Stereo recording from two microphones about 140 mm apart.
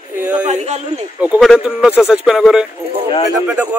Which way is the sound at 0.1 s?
10° right (ahead or behind).